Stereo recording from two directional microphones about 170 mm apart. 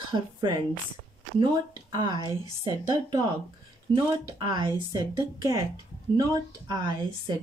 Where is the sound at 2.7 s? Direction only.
20° right (ahead or behind).